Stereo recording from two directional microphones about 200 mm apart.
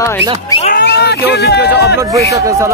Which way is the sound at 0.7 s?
55° left (ahead or behind).